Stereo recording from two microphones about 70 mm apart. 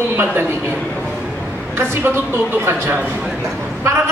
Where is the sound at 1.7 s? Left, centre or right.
Right.